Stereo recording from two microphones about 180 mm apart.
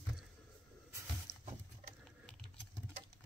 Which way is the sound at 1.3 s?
40° left (ahead or behind).